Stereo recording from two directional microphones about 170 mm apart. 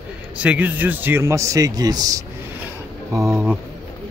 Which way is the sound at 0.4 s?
10° right (ahead or behind).